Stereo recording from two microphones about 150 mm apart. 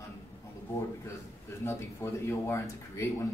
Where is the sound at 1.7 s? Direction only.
20° left (ahead or behind).